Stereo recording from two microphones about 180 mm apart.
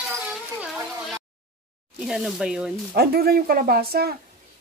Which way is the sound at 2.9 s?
60° right (ahead or behind).